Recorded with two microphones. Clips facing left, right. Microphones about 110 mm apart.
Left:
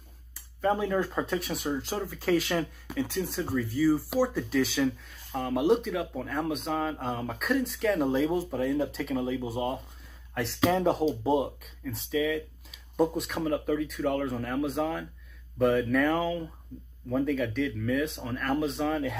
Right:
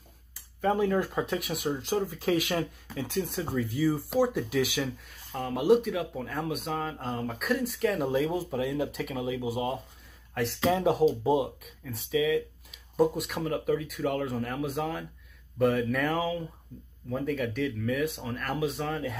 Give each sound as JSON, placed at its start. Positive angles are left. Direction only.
{"t": 0.8, "sound": "speech", "side_deg": -10}
{"t": 5.3, "sound": "speech", "side_deg": 0}